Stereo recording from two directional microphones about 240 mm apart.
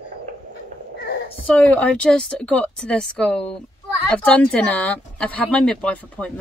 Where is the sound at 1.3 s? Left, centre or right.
Centre.